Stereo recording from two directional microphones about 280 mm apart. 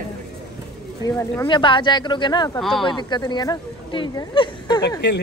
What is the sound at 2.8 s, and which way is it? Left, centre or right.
A woman's voice, centre.